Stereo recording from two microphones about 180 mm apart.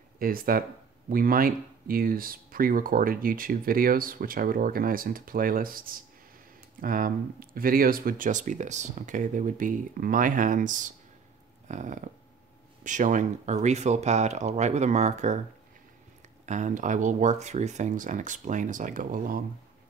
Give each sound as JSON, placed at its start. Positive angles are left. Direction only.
{"t": 0.2, "sound": "speech", "side_deg": -55}
{"t": 16.4, "sound": "speech", "side_deg": -40}